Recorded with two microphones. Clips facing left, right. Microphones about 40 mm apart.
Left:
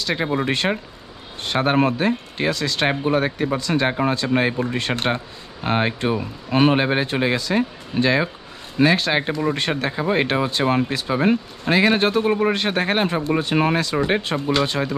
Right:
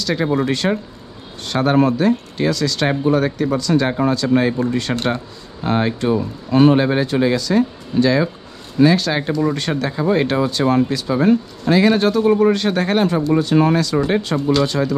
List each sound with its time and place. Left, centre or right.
0.0 s speech: left